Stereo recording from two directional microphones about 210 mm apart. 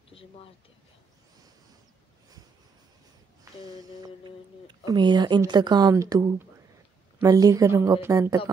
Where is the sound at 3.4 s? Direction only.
15° right (ahead or behind).